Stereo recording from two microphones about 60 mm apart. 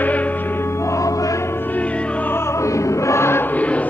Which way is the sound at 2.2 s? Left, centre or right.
Left.